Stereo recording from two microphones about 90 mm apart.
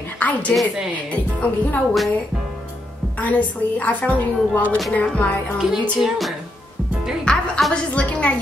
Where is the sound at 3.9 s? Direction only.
15° left (ahead or behind).